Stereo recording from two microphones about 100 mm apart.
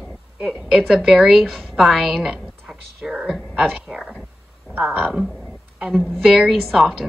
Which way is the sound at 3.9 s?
10° right (ahead or behind).